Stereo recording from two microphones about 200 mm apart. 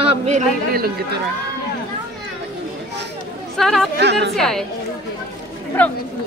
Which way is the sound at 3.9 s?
60° right (ahead or behind).